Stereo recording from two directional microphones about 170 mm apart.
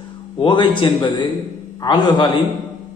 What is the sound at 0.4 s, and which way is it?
A man's voice, 30° left (ahead or behind).